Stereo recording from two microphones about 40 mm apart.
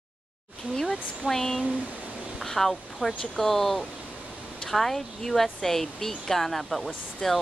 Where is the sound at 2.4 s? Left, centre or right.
Centre.